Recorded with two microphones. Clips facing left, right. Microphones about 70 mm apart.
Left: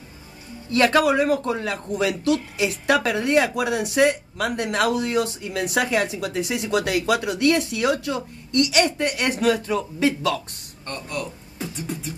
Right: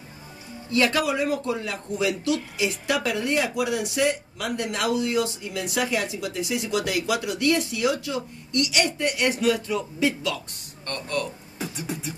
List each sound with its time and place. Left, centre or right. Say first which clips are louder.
0.7 s a man's voice: left 5 dB; left
10.9 s speech: right 1 dB; centre
11.7 s beatboxing: left 3 dB; centre